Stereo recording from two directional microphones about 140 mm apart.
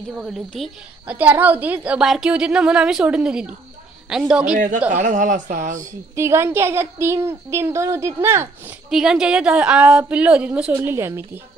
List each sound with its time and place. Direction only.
0.3 s a woman's voice: centre (ahead or behind)
1.0 s a woman's voice: 10° right (ahead or behind)
4.6 s speech: 65° right (ahead or behind)
6.1 s a woman's voice: 20° right (ahead or behind)
8.9 s a woman's voice: 5° right (ahead or behind)